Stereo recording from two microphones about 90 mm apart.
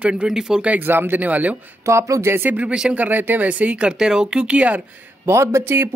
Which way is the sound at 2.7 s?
5° right (ahead or behind).